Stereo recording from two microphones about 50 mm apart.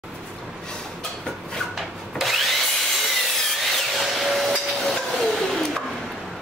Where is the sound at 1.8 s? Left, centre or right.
Centre.